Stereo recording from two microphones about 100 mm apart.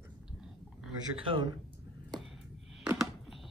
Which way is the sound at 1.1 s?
55° right (ahead or behind).